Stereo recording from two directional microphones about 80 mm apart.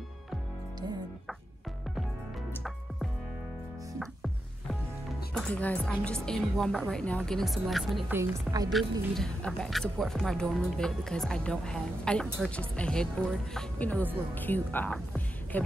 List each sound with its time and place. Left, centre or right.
4.0 s music: centre
5.3 s speech: centre
7.3 s speech: centre
8.1 s a woman's voice: right
8.6 s speech: centre
13.7 s speech: centre